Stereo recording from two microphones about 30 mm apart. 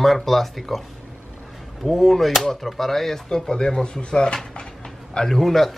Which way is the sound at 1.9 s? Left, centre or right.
Centre.